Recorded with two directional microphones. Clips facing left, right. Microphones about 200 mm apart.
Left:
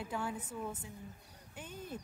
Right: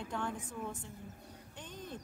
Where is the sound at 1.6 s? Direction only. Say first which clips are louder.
Left 1 dB; 10° left (ahead or behind).